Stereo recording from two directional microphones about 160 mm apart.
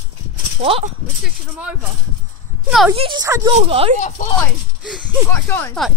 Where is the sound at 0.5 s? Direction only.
40° right (ahead or behind).